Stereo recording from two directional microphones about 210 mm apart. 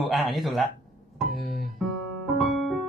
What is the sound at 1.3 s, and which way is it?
Music, 40° left (ahead or behind).